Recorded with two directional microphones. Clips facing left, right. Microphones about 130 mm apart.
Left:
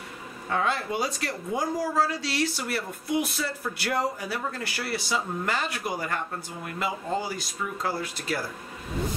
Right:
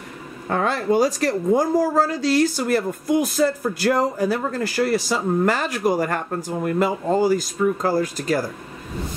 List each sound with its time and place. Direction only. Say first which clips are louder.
0.5 s speech: right 7 dB; 45° right (ahead or behind)